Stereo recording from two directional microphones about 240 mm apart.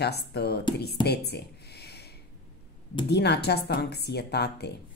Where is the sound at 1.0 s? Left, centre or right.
Left.